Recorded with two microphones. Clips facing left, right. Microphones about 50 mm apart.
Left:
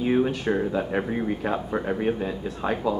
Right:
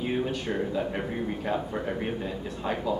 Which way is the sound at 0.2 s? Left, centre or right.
Left.